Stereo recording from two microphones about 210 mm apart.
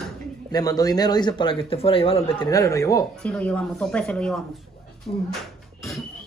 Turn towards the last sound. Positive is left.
turn(degrees=30)  # may be behind; listen again after turning